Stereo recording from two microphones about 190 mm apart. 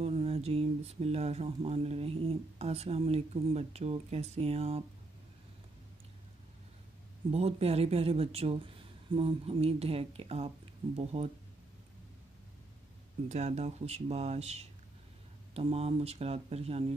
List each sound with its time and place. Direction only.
0.0 s speech: 30° right (ahead or behind)
7.2 s speech: 35° right (ahead or behind)
13.3 s speech: 35° right (ahead or behind)